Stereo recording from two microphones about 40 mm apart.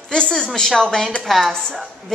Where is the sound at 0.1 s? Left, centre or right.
Centre.